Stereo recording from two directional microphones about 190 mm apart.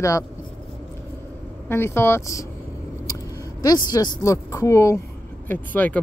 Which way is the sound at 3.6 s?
20° left (ahead or behind).